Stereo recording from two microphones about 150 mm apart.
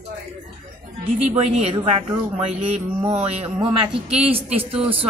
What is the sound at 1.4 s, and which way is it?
Speech, 45° right (ahead or behind).